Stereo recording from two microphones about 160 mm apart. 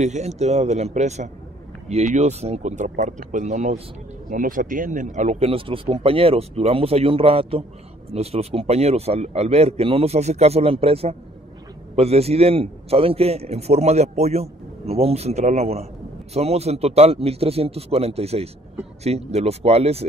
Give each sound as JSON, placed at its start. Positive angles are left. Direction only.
{"t": 0.0, "sound": "speech", "side_deg": -45}
{"t": 4.3, "sound": "a man's voice", "side_deg": -55}